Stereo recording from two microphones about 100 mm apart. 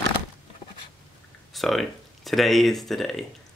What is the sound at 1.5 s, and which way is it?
Speech, centre (ahead or behind).